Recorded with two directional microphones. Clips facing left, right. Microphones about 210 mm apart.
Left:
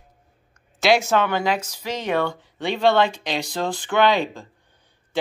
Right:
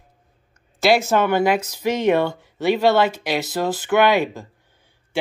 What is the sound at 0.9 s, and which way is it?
Speech, 5° right (ahead or behind).